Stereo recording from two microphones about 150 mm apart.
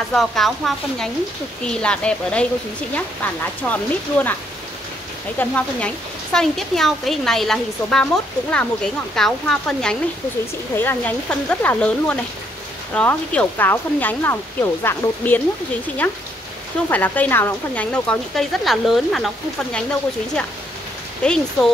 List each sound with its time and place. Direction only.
0.1 s speech: centre (ahead or behind)
5.4 s speech: 5° left (ahead or behind)
21.2 s speech: 5° left (ahead or behind)